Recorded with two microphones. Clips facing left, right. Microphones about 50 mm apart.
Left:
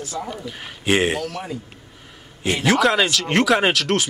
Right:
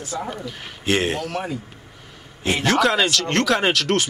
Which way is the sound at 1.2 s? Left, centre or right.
Right.